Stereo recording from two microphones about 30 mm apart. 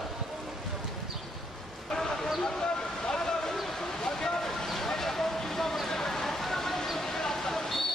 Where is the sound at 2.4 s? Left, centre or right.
Left.